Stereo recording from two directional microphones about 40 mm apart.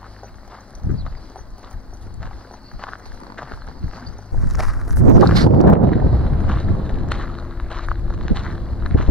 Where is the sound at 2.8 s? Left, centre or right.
Left.